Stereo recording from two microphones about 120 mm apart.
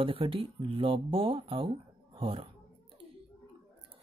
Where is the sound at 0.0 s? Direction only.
50° right (ahead or behind).